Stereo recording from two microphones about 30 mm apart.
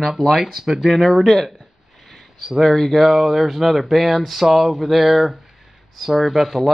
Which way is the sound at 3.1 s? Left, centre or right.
Centre.